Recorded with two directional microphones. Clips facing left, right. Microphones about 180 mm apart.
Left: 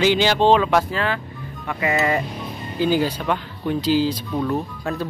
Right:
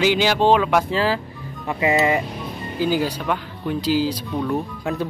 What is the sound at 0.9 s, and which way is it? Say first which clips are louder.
Speech: right 3 dB; 30° right (ahead or behind).